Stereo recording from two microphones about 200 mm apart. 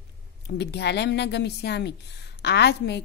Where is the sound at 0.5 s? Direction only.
55° left (ahead or behind).